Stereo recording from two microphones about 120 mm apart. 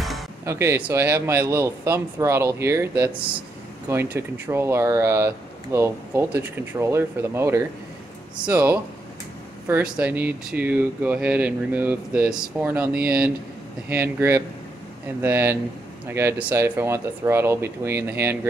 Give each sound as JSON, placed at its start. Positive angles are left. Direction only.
{"t": 0.5, "sound": "speech", "side_deg": -20}